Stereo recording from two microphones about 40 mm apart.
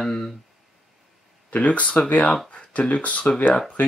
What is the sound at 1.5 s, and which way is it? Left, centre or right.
Speech, left.